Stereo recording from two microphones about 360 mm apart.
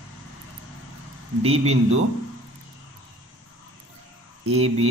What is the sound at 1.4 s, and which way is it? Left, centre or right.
Speech, centre.